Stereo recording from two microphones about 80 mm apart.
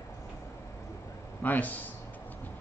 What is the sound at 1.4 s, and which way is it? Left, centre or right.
Speech, left.